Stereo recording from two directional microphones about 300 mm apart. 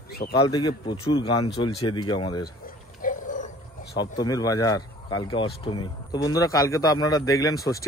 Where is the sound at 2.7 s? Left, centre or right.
Left.